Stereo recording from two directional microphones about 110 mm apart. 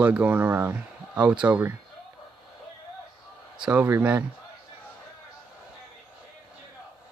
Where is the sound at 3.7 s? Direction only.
15° right (ahead or behind).